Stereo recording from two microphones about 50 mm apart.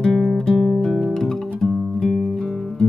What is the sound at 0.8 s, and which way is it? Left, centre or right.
Music, centre.